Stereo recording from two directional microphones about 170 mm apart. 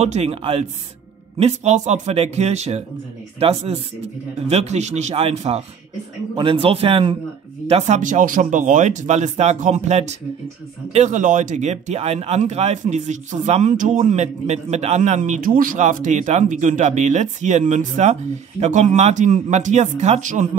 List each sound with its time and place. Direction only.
0.0 s speech: 40° right (ahead or behind)